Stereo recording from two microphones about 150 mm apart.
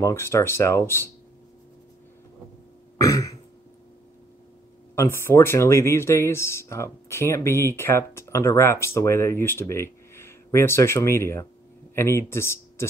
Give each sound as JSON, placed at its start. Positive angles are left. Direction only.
{"t": 0.0, "sound": "speech", "side_deg": 20}
{"t": 3.0, "sound": "throat clearing", "side_deg": 20}
{"t": 4.9, "sound": "speech", "side_deg": 15}